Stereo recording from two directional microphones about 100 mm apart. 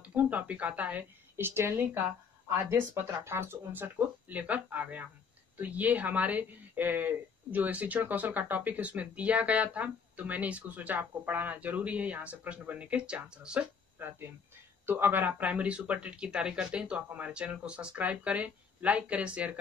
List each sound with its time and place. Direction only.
0.0 s speech: 15° right (ahead or behind)
13.9 s speech: 20° right (ahead or behind)